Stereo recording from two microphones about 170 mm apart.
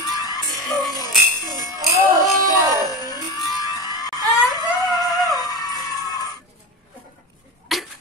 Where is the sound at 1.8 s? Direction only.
20° right (ahead or behind).